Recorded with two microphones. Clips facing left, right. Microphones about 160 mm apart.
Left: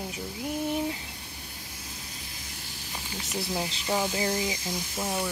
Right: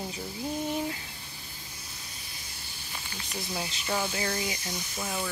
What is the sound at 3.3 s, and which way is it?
Speech, 15° left (ahead or behind).